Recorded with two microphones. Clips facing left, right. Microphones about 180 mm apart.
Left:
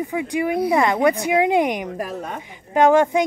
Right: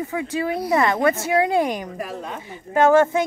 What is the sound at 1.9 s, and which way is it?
Speech, 50° left (ahead or behind).